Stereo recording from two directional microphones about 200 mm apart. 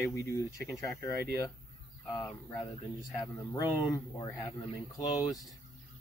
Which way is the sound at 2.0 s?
15° left (ahead or behind).